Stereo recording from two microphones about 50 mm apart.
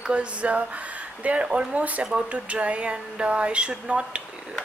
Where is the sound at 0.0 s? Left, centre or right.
Right.